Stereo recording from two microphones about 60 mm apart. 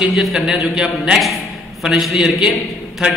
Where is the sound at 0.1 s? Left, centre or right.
Centre.